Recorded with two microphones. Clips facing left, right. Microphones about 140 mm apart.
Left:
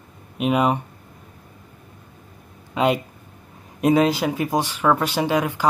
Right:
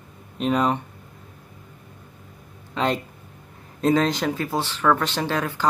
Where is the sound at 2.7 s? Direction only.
10° left (ahead or behind).